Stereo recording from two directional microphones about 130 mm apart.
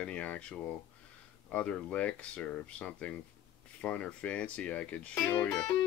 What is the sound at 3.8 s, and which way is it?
Music, 10° left (ahead or behind).